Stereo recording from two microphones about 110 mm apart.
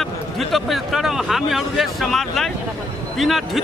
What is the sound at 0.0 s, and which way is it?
A man's voice, centre (ahead or behind).